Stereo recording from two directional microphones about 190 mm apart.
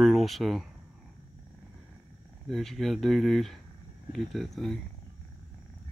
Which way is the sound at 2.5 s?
Centre (ahead or behind).